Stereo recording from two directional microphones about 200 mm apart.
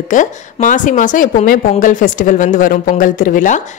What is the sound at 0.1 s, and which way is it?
A woman's voice, 40° left (ahead or behind).